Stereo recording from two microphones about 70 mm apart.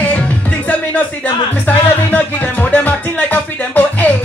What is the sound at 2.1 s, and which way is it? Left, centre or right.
Music, centre.